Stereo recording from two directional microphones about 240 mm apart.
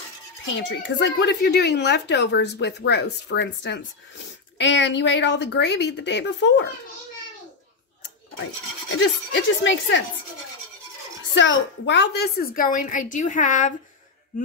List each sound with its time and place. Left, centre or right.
0.6 s speech: left
8.9 s speech: left
11.3 s a woman's voice: left